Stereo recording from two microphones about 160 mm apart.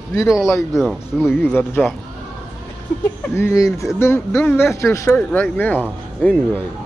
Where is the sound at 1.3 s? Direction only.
15° left (ahead or behind).